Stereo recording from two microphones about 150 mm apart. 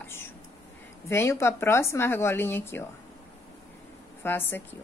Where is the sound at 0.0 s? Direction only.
15° left (ahead or behind).